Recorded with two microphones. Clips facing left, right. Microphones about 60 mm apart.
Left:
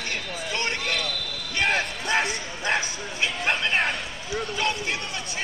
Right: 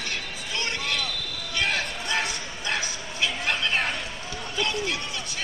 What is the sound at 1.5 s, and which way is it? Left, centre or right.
Basketball bounce, left.